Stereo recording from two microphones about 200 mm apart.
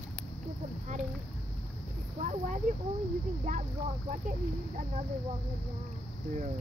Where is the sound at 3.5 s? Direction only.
40° right (ahead or behind).